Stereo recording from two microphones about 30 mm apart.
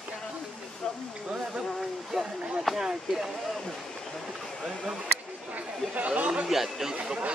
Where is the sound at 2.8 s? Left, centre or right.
Centre.